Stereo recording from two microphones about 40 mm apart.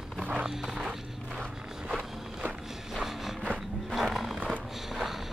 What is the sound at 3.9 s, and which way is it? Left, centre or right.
Music, centre.